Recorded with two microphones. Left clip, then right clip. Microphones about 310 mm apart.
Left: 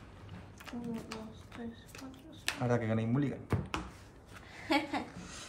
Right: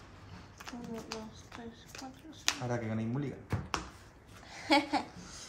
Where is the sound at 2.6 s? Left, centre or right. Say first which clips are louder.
Left 4 dB; left.